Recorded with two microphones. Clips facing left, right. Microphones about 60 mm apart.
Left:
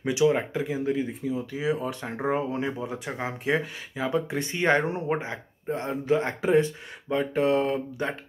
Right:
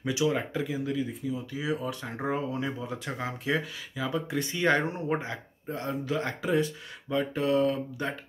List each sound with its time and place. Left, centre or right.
0.0 s speech: left
0.7 s speech: left